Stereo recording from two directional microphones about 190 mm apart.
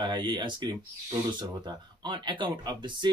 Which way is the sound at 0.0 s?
25° right (ahead or behind).